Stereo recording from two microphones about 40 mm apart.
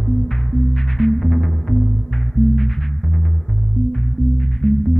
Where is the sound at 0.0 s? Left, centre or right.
Centre.